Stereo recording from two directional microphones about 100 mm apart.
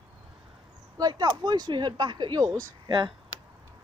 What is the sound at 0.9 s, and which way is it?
Speech, 40° right (ahead or behind).